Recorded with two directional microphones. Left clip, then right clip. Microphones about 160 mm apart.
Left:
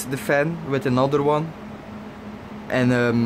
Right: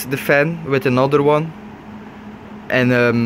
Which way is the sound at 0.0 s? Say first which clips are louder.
Right 6 dB; 10° right (ahead or behind).